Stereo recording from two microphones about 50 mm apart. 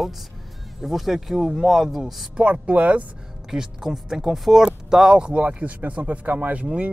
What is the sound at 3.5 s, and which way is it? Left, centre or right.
Speech, centre.